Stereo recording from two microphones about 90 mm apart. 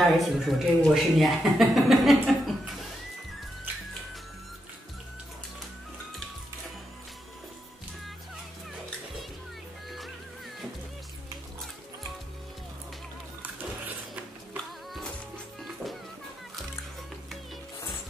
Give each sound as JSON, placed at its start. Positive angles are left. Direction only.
{"t": 0.0, "sound": "speech", "side_deg": -5}
{"t": 9.8, "sound": "music", "side_deg": 0}
{"t": 13.4, "sound": "music", "side_deg": -20}
{"t": 15.6, "sound": "music", "side_deg": 0}